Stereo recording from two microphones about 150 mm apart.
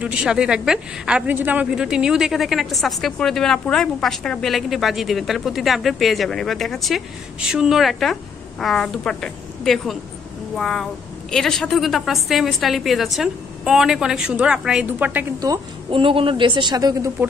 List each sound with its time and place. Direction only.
0.0 s a woman's voice: 5° right (ahead or behind)
15.9 s a woman's voice: 35° right (ahead or behind)